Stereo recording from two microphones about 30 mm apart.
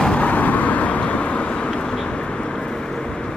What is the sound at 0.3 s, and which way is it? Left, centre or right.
Vehicle, left.